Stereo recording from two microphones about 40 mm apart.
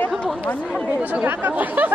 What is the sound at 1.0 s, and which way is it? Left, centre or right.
Speech, right.